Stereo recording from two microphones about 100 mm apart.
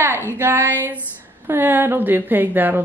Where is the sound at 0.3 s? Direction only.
25° right (ahead or behind).